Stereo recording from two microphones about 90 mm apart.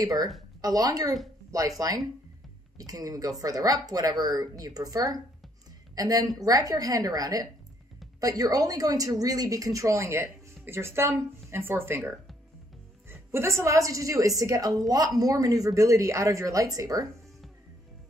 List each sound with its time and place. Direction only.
0.0 s a woman's voice: 45° right (ahead or behind)